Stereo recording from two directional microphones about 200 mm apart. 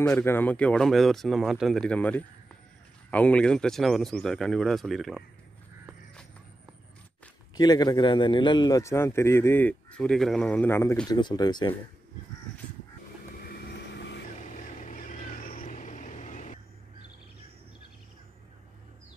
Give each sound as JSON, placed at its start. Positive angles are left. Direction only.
{"t": 0.0, "sound": "speech", "side_deg": 10}
{"t": 7.5, "sound": "a man's voice", "side_deg": 20}
{"t": 13.4, "sound": "vehicle", "side_deg": 50}
{"t": 14.4, "sound": "vehicle", "side_deg": 40}